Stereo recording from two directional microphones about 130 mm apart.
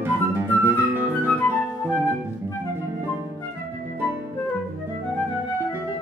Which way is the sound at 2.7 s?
15° right (ahead or behind).